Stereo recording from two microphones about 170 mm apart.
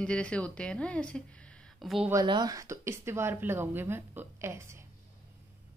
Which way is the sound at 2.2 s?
25° right (ahead or behind).